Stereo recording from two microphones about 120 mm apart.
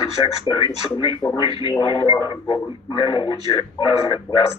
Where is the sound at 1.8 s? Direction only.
50° left (ahead or behind).